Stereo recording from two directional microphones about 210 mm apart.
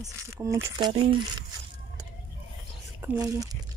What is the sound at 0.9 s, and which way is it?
Speech, 25° right (ahead or behind).